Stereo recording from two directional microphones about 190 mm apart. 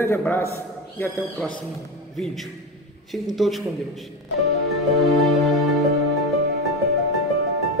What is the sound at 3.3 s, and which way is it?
Speech, centre (ahead or behind).